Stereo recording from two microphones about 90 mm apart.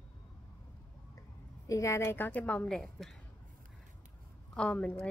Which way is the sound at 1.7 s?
35° left (ahead or behind).